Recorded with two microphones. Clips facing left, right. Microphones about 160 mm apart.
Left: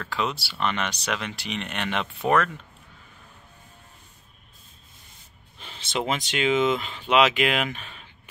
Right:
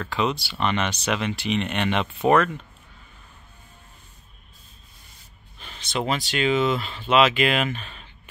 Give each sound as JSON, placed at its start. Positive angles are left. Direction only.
{"t": 0.0, "sound": "speech", "side_deg": 0}
{"t": 5.6, "sound": "speech", "side_deg": 25}